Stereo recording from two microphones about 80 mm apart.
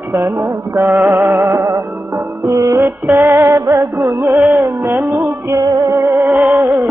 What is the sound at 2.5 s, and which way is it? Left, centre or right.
Music, right.